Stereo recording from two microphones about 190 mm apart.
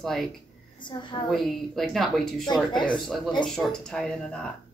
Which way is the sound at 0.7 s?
25° left (ahead or behind).